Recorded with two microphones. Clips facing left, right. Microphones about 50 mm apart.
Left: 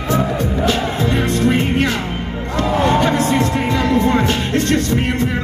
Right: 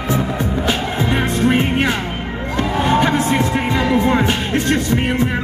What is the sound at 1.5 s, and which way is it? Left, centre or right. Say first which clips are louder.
Music: right 1 dB; centre.